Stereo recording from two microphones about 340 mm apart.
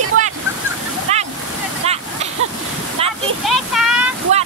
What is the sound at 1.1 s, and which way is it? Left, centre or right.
Waterfall, centre.